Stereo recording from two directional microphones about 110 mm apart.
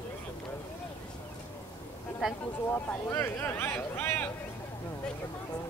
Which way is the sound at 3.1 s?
20° left (ahead or behind).